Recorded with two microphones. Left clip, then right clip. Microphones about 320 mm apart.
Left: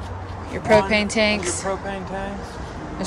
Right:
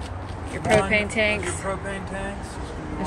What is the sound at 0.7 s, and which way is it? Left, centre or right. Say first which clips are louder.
Speech: left 3 dB; centre.